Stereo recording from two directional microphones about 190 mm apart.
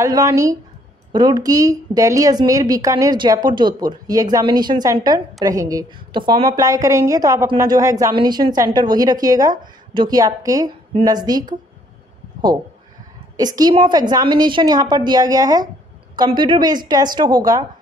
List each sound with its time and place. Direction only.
0.0 s a woman's voice: 15° right (ahead or behind)
13.4 s a woman's voice: 20° right (ahead or behind)